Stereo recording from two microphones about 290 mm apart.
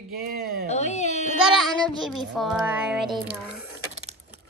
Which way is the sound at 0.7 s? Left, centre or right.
Left.